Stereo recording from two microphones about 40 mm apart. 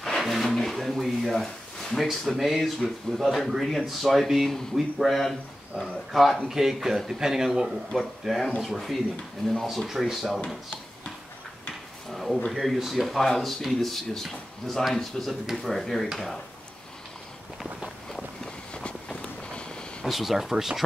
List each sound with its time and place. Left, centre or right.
0.2 s speech: centre
9.8 s speech: centre
12.1 s speech: centre
18.7 s vehicle: left
20.1 s speech: centre